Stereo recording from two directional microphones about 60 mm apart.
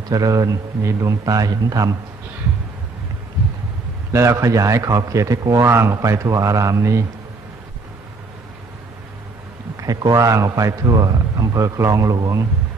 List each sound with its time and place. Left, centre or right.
0.1 s speech: right
0.8 s a man's voice: right
4.1 s a man's voice: right
5.7 s a man's voice: right
9.8 s a man's voice: right